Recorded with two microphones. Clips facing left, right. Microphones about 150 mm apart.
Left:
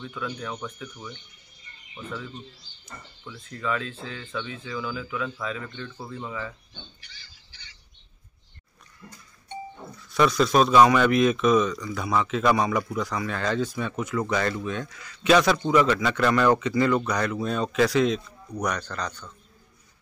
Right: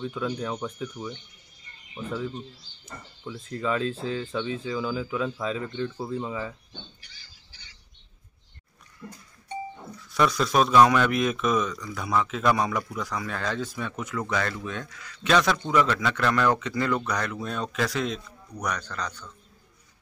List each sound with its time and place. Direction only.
0.0 s speech: 25° right (ahead or behind)
2.2 s speech: 40° right (ahead or behind); by 6.5 s 15° right (ahead or behind)
10.1 s speech: centre (ahead or behind)